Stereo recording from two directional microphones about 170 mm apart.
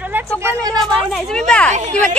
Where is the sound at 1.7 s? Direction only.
45° right (ahead or behind).